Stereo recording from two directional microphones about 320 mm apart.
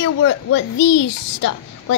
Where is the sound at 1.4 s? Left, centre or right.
Left.